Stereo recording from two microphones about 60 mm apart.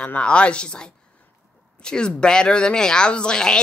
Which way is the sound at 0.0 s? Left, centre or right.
Centre.